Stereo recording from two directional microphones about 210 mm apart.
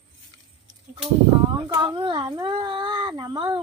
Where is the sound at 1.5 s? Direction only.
20° right (ahead or behind).